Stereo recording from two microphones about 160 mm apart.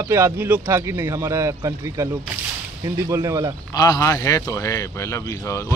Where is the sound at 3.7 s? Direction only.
25° left (ahead or behind).